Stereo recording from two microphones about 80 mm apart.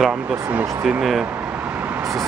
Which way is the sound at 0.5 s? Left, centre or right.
Centre.